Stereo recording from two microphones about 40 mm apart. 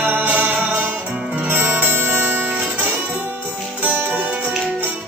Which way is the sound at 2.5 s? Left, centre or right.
Right.